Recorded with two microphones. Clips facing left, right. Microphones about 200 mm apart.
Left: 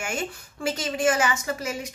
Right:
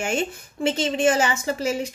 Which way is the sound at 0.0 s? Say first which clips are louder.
Right 5 dB; 25° right (ahead or behind).